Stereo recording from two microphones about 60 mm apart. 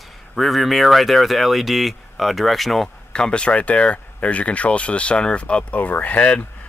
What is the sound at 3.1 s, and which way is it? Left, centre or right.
Speech, centre.